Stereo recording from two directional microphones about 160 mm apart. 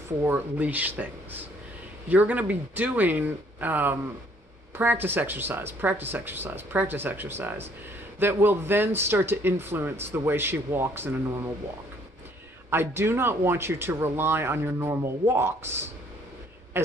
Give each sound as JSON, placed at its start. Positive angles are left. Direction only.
{"t": 0.2, "sound": "speech", "side_deg": -10}
{"t": 12.6, "sound": "speech", "side_deg": -15}
{"t": 16.8, "sound": "duck", "side_deg": -15}